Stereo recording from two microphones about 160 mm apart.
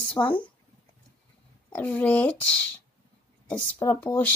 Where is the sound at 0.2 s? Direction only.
20° left (ahead or behind).